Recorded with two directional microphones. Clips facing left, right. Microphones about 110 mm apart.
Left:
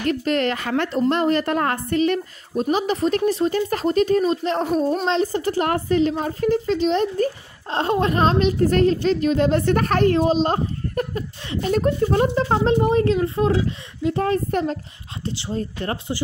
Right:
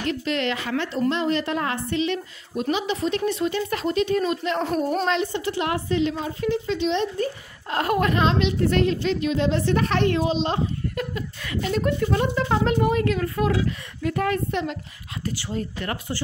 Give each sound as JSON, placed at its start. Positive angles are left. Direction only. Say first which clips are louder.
{"t": 0.1, "sound": "a woman's voice", "louder": "left 5 dB", "side_deg": 45}
{"t": 4.6, "sound": "speech", "louder": "left 3 dB", "side_deg": 0}
{"t": 5.0, "sound": "speech", "louder": "left 3 dB", "side_deg": 35}
{"t": 7.7, "sound": "speech", "louder": "left 2 dB", "side_deg": 30}
{"t": 8.2, "sound": "a woman's voice", "louder": "left 3 dB", "side_deg": 40}
{"t": 11.0, "sound": "speech", "louder": "left 4 dB", "side_deg": 35}
{"t": 15.2, "sound": "speech", "louder": "left 2 dB", "side_deg": 20}